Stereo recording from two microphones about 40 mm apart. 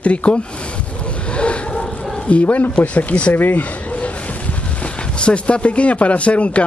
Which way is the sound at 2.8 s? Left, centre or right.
Left.